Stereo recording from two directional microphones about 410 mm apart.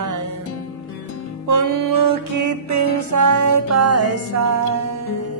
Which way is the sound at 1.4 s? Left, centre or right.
Right.